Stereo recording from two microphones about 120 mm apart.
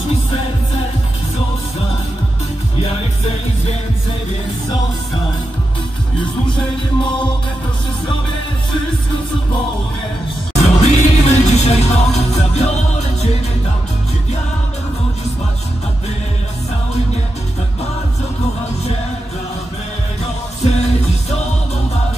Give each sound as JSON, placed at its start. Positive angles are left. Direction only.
{"t": 10.6, "sound": "music", "side_deg": 65}
{"t": 20.6, "sound": "music", "side_deg": 65}